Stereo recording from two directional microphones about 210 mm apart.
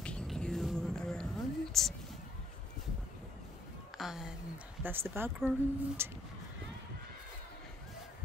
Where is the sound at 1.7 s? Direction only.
Centre (ahead or behind).